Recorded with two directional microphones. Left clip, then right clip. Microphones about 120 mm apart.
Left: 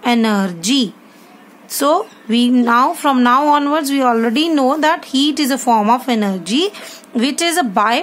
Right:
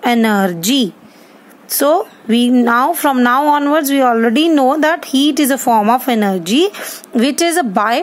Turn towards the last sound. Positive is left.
turn(degrees=-50)  # may be behind; listen again after turning